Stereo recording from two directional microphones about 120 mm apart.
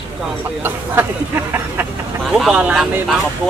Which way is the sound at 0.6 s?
20° right (ahead or behind).